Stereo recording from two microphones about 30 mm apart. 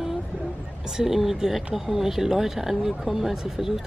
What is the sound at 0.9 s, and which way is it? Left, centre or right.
Speech, centre.